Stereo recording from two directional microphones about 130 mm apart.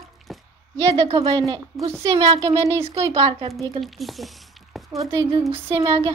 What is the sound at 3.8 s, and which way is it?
Speech, centre (ahead or behind).